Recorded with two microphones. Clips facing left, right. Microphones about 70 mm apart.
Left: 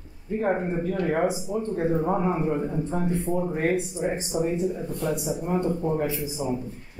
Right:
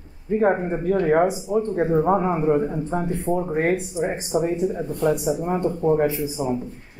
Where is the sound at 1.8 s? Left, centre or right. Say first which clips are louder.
Right 4 dB; right.